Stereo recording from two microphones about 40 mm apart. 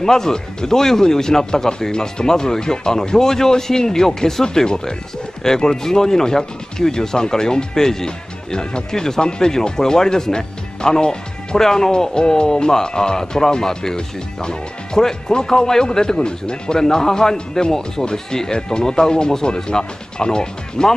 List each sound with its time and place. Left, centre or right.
0.0 s speech: centre